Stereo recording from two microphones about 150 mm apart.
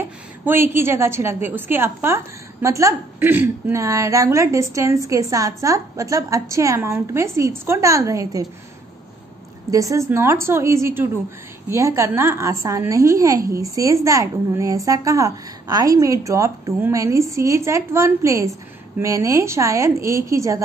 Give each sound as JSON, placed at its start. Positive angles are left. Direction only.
{"t": 0.0, "sound": "a woman's voice", "side_deg": -15}
{"t": 9.7, "sound": "a woman's voice", "side_deg": -20}